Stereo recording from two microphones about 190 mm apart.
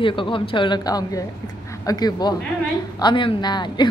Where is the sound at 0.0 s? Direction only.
25° left (ahead or behind).